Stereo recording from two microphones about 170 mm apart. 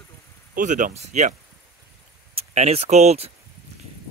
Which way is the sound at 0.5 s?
50° right (ahead or behind).